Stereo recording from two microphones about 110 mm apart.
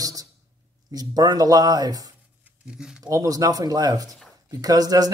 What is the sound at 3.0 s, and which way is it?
A man's voice, 30° right (ahead or behind).